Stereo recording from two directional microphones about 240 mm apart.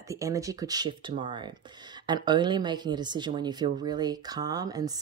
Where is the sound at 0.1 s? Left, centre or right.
Centre.